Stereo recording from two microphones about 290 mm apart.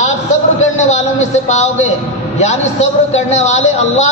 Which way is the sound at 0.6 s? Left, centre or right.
Left.